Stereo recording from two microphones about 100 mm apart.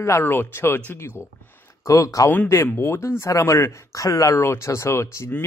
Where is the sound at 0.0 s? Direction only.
25° left (ahead or behind).